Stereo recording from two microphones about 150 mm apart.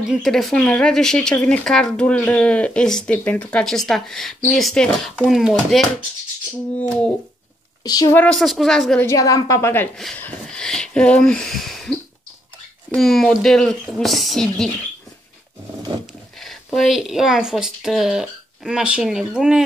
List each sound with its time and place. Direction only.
0.0 s speech: centre (ahead or behind)
7.8 s a woman's voice: 25° left (ahead or behind)
8.2 s speech: 5° left (ahead or behind)
9.0 s a woman's voice: 20° left (ahead or behind)
9.9 s speech: centre (ahead or behind)
16.3 s speech: centre (ahead or behind)